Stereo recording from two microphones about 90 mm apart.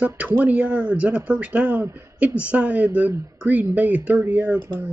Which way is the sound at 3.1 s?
40° right (ahead or behind).